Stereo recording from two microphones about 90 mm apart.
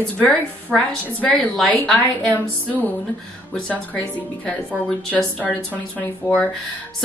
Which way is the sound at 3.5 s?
15° left (ahead or behind).